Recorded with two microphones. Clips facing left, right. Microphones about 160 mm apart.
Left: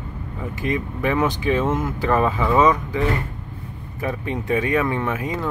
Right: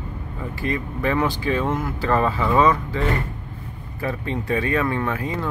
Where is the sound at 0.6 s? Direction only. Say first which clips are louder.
Left 1 dB; 20° left (ahead or behind).